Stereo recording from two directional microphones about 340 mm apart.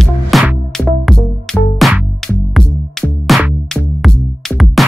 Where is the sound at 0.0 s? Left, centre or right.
Centre.